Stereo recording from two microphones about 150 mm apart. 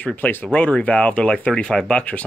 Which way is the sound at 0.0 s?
10° left (ahead or behind).